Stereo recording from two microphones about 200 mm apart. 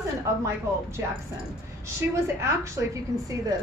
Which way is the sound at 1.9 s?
15° right (ahead or behind).